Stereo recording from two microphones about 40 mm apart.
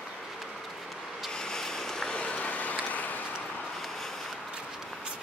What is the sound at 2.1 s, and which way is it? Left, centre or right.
Vehicle, left.